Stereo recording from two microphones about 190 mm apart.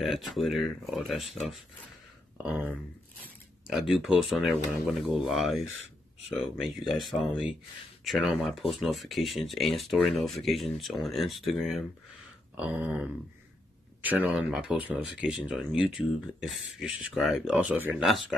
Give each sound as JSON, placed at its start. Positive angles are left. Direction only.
{"t": 0.0, "sound": "speech", "side_deg": 0}
{"t": 7.1, "sound": "speech", "side_deg": 0}